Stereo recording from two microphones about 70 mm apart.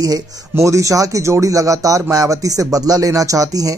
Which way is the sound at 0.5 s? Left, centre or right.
Right.